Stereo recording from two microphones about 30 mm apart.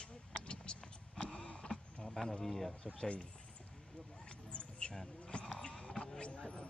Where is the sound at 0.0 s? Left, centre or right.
Left.